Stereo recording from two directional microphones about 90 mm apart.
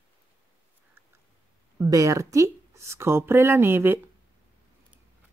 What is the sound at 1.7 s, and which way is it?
A woman's voice, 35° right (ahead or behind).